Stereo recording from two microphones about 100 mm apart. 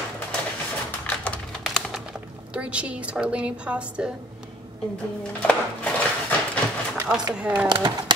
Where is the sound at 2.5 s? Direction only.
10° right (ahead or behind).